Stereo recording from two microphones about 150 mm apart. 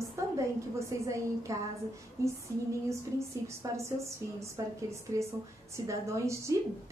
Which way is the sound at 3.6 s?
20° right (ahead or behind).